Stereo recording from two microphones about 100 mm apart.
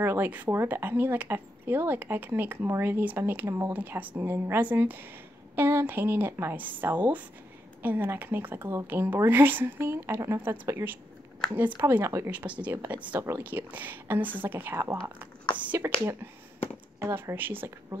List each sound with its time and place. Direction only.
0.0 s a woman's voice: 20° right (ahead or behind)
11.8 s a woman's voice: 30° right (ahead or behind)
12.3 s a woman's voice: 15° right (ahead or behind)